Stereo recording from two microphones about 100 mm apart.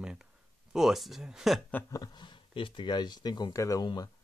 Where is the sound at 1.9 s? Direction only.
45° left (ahead or behind).